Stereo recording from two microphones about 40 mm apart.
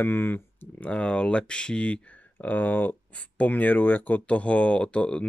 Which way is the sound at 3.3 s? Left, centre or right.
Left.